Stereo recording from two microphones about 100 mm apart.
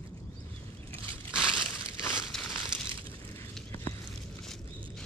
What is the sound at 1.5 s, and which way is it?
Crumpling, 25° left (ahead or behind).